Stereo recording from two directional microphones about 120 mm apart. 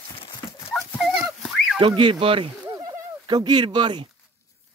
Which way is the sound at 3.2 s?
40° right (ahead or behind).